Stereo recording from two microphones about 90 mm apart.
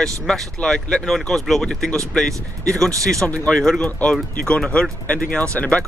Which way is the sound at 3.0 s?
Centre (ahead or behind).